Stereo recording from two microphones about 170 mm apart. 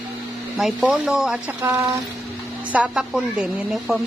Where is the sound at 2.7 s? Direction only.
5° right (ahead or behind).